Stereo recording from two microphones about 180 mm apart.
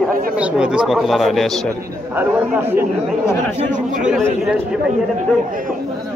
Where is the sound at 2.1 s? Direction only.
10° right (ahead or behind).